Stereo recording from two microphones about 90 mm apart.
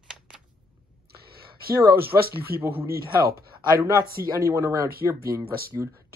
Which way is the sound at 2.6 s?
25° right (ahead or behind).